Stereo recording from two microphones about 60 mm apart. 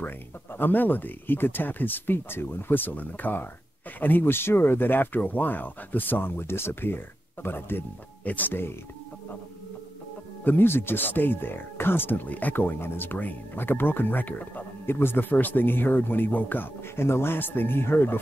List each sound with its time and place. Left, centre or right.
0.6 s speech: left
8.2 s speech: left
10.4 s speech: left
14.9 s speech: left